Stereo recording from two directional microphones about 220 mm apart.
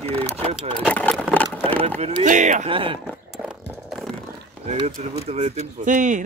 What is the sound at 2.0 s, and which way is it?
Speech, 30° right (ahead or behind).